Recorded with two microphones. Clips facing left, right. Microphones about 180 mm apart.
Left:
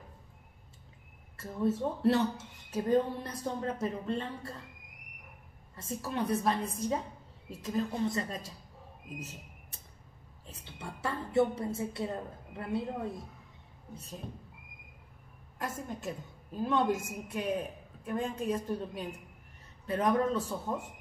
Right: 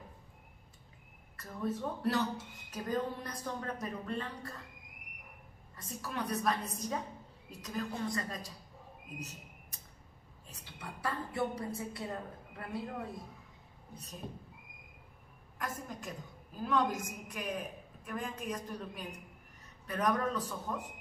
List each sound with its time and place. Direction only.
1.3 s a woman's voice: 25° left (ahead or behind)
5.8 s a woman's voice: 25° left (ahead or behind)
10.4 s a woman's voice: 25° left (ahead or behind)
15.6 s a woman's voice: 25° left (ahead or behind)